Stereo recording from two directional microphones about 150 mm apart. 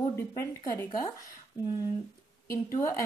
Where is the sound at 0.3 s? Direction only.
25° left (ahead or behind).